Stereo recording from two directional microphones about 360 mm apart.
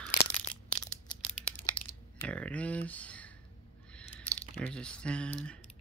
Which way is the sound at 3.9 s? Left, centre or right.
Centre.